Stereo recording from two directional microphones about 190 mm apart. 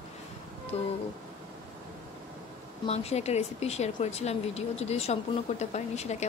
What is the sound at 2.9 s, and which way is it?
Speech, 35° left (ahead or behind).